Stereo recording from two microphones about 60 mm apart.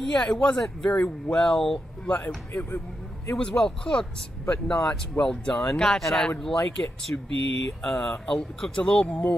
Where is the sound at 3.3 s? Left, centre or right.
Centre.